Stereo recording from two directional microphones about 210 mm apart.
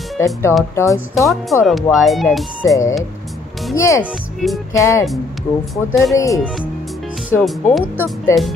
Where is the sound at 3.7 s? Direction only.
15° left (ahead or behind).